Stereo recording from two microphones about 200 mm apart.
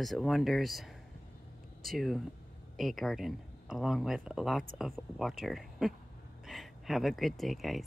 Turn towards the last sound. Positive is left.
turn(degrees=0)  # may be behind; listen again after turning